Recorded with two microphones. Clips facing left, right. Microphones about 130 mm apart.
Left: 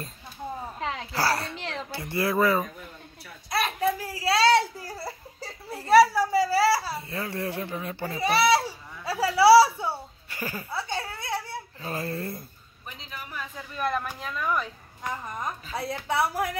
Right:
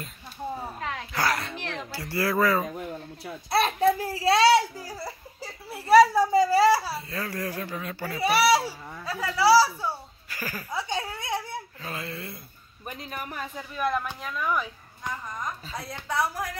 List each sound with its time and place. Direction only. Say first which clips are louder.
0.7 s a sound: left 5 dB; 30° left (ahead or behind)
1.9 s a woman's voice: even; 20° left (ahead or behind)
2.7 s a sound: right 9 dB; 65° right (ahead or behind)
3.4 s a child's voice: right 4 dB; 30° right (ahead or behind)
4.5 s a sound: right 1 dB; centre (ahead or behind); by 6.8 s 20° right (ahead or behind)
6.9 s a woman's voice: even; 25° left (ahead or behind)
8.2 s a child's voice: even; 15° right (ahead or behind)
9.0 s baby laughter: left 5 dB; 30° left (ahead or behind)
9.4 s a child's voice: left 3 dB; 25° left (ahead or behind)
10.7 s a sound: right 4 dB; 15° right (ahead or behind)
11.8 s speech: left 9 dB; 35° left (ahead or behind)
12.8 s a man's voice: right 5 dB; 50° right (ahead or behind)
13.7 s speech: right 1 dB; centre (ahead or behind)
15.0 s a woman's voice: left 1 dB; 25° left (ahead or behind)